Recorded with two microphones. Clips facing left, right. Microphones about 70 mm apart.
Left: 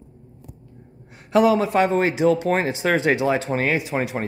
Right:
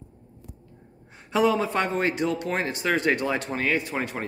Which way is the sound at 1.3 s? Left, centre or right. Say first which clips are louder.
Left 5 dB; centre.